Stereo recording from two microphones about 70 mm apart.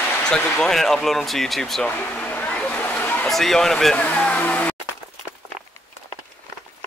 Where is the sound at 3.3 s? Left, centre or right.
Centre.